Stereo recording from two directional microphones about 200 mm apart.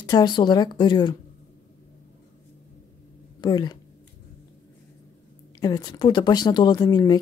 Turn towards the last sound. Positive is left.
turn(degrees=20)  # may be behind; listen again after turning